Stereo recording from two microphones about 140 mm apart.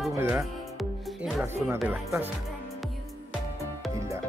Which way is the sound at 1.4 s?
15° right (ahead or behind).